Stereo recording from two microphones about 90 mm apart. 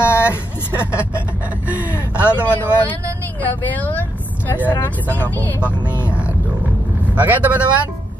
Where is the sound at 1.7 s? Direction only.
15° right (ahead or behind).